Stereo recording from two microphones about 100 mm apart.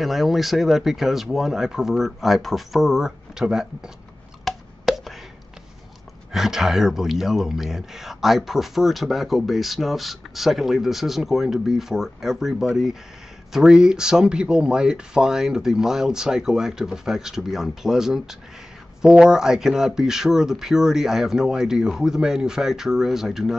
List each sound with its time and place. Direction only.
0.0 s speech: centre (ahead or behind)
4.5 s a sound: centre (ahead or behind)
6.3 s speech: 5° right (ahead or behind)